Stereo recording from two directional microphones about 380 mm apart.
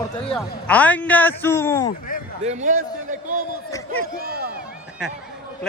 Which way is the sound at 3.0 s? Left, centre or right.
Centre.